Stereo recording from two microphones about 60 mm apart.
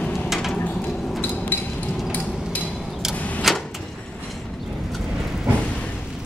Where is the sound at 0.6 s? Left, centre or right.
Left.